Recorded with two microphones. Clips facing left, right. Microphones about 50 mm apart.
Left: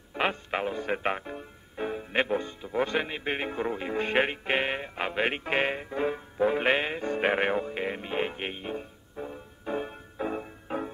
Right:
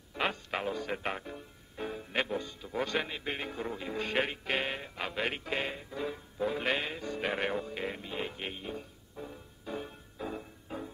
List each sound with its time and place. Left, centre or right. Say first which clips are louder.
0.1 s music: left 5 dB; left
0.7 s music: left 6 dB; left
2.7 s a man's voice: left 5 dB; centre
3.3 s music: left 6 dB; left